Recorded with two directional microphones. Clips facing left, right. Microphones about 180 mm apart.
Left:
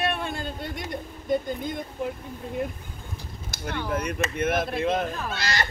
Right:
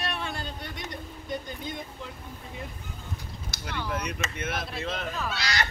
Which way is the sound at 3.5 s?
50° left (ahead or behind).